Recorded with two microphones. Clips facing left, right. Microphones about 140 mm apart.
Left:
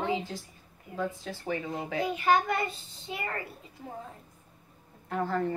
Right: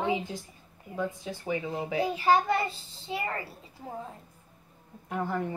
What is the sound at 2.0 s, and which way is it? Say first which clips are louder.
A child's voice: right 1 dB; 30° right (ahead or behind).